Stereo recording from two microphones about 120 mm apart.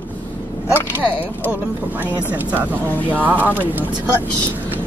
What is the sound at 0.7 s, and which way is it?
Speech, 15° left (ahead or behind).